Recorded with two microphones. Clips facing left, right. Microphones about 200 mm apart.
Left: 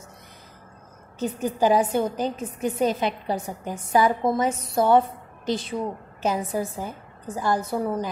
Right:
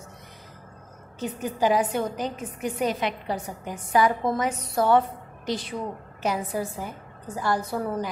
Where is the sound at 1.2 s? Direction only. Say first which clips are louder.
Left 3 dB; 30° left (ahead or behind).